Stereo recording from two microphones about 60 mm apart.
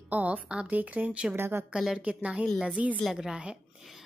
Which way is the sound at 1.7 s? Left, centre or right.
Centre.